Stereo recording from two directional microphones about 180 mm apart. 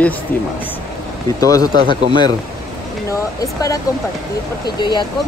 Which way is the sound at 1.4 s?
20° left (ahead or behind).